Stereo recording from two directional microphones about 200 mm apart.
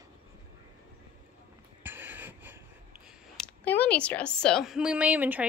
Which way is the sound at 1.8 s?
10° right (ahead or behind).